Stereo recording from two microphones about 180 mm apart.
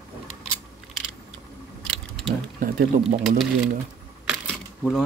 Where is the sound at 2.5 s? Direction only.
50° right (ahead or behind).